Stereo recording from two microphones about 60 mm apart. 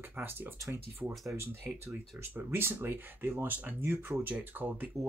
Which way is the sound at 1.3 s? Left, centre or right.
Right.